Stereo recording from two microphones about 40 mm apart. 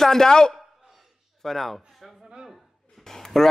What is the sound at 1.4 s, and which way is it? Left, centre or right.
A man's voice, centre.